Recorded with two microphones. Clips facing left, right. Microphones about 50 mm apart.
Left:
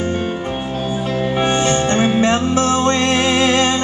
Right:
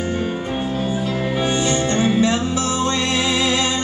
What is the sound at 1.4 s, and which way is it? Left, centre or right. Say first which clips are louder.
Music: left 4 dB; left.